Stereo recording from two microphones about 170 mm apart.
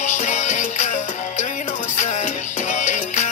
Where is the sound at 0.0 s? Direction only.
45° left (ahead or behind).